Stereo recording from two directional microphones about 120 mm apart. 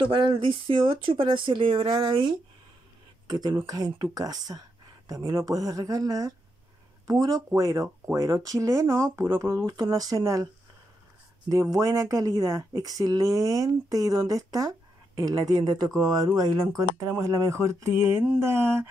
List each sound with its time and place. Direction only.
0.0 s speech: 45° right (ahead or behind); by 18.9 s 20° right (ahead or behind)